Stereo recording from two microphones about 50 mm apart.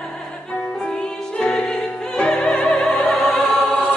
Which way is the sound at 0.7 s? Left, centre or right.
Centre.